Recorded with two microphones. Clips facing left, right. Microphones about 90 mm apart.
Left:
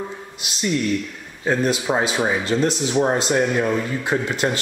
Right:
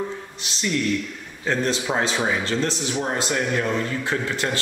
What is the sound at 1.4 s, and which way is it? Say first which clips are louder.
A man's voice: left 3 dB; 10° left (ahead or behind).